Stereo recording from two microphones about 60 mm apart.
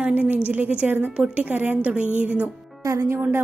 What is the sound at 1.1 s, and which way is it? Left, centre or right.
A woman's voice, centre.